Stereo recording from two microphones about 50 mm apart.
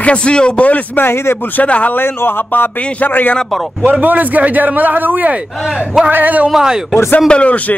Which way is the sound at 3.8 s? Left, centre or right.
Right.